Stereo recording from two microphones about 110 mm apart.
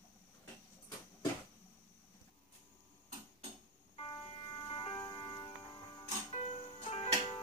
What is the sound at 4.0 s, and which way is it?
Music, 50° left (ahead or behind).